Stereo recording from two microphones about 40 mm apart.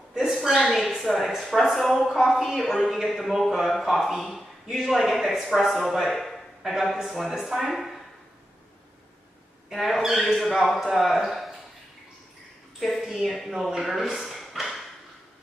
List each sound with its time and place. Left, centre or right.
0.6 s a woman's voice: centre
9.7 s a man's voice: centre
12.8 s a man's voice: centre
14.2 s a sound: centre